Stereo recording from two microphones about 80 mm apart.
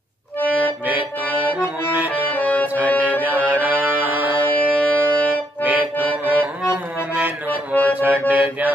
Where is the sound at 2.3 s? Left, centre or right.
Centre.